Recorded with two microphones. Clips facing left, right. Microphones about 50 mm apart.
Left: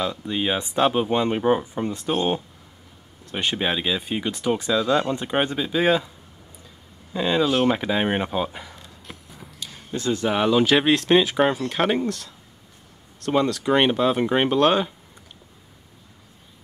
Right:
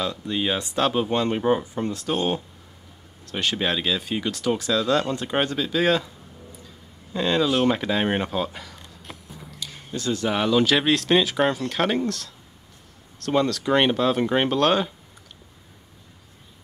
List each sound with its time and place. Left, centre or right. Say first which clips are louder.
0.0 s speech: left 1 dB; centre
7.2 s speech: left 1 dB; centre
9.9 s speech: left 2 dB; left